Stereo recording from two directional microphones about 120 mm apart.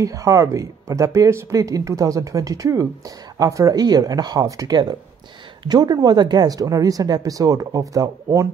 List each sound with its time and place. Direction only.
0.0 s speech: 25° right (ahead or behind)